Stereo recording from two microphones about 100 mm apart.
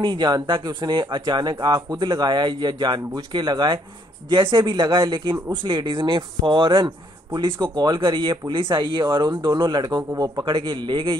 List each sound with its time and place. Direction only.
0.0 s speech: 50° right (ahead or behind)
10.7 s speech: 55° right (ahead or behind)